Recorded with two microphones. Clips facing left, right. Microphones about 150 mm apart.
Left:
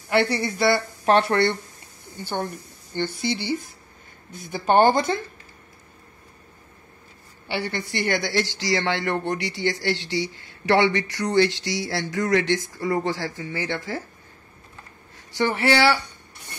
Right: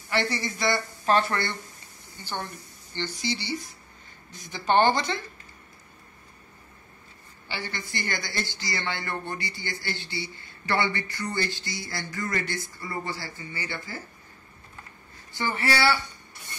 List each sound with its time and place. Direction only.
0.1 s speech: 65° left (ahead or behind)
2.2 s speech: 50° left (ahead or behind)
7.4 s speech: 65° left (ahead or behind); by 14.0 s 90° left
15.1 s speech: 75° left (ahead or behind)